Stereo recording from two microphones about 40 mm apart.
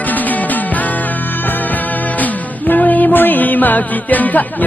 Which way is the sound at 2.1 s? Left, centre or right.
Left.